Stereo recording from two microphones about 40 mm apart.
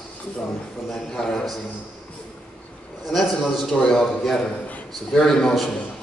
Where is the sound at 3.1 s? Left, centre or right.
Centre.